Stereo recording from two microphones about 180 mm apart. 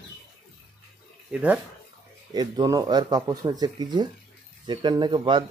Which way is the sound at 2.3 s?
20° right (ahead or behind).